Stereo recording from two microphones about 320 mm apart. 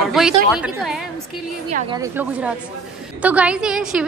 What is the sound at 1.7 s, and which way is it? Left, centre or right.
Speech, right.